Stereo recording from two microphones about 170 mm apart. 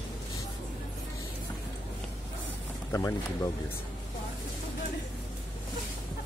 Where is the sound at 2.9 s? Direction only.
15° left (ahead or behind).